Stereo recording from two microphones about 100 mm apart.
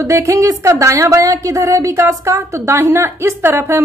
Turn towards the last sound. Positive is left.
turn(degrees=-25)  # may be behind; listen again after turning